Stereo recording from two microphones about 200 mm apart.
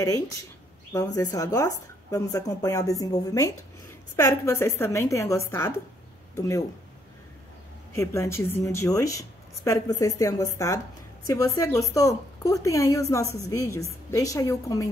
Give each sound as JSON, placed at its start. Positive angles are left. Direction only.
{"t": 0.9, "sound": "speech", "side_deg": 20}
{"t": 7.9, "sound": "speech", "side_deg": 15}